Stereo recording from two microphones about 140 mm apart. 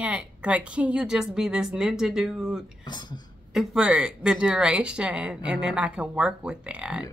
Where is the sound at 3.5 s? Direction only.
5° right (ahead or behind).